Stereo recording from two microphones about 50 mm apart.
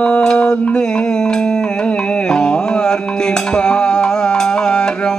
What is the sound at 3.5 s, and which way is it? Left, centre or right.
Music, centre.